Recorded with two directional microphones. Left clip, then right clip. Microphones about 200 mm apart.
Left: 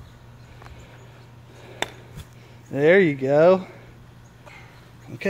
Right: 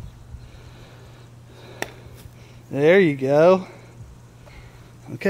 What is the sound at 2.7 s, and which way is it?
Speech, 5° right (ahead or behind).